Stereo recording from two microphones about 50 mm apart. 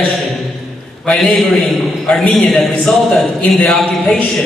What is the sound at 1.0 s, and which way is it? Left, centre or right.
Speech, centre.